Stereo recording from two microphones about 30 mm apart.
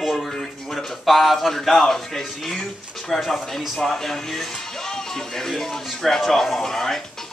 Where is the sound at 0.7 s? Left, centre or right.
Centre.